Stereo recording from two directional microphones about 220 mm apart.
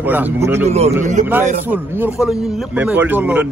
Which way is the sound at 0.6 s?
30° right (ahead or behind).